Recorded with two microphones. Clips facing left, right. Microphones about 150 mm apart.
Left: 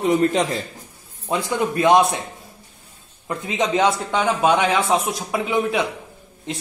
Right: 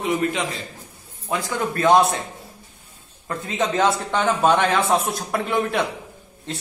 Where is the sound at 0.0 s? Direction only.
40° left (ahead or behind).